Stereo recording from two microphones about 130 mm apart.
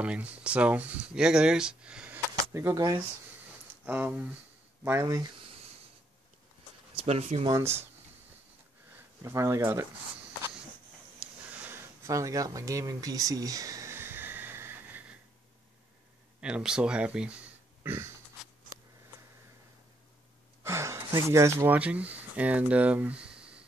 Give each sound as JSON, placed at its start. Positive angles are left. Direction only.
{"t": 0.0, "sound": "speech", "side_deg": -10}
{"t": 2.3, "sound": "speech", "side_deg": -25}
{"t": 3.8, "sound": "speech", "side_deg": -15}
{"t": 7.0, "sound": "speech", "side_deg": -55}
{"t": 7.5, "sound": "speech", "side_deg": -20}
{"t": 8.9, "sound": "speech", "side_deg": -20}
{"t": 11.1, "sound": "a sound", "side_deg": -15}
{"t": 16.3, "sound": "speech", "side_deg": -5}
{"t": 20.6, "sound": "sigh", "side_deg": -20}
{"t": 21.3, "sound": "speech", "side_deg": -20}